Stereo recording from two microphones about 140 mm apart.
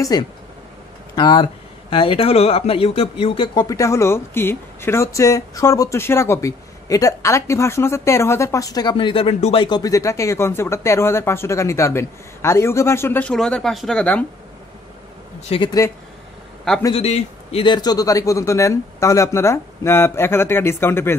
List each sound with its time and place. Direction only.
0.1 s speech: 30° left (ahead or behind)
3.6 s speech: 20° left (ahead or behind)
8.9 s a man's voice: 40° left (ahead or behind)
9.6 s speech: 30° left (ahead or behind)
13.3 s speech: 5° left (ahead or behind)
15.4 s a man's voice: 45° left (ahead or behind)
16.9 s a man's voice: 45° left (ahead or behind)
17.7 s speech: 30° left (ahead or behind)